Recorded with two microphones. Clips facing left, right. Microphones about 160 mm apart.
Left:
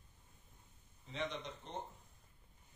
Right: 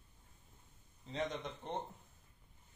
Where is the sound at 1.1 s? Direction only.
50° right (ahead or behind).